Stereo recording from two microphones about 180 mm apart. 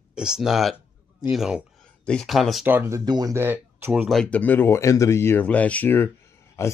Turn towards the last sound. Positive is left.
turn(degrees=15)  # may be behind; listen again after turning